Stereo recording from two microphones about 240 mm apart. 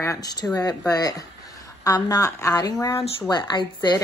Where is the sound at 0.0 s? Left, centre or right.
Centre.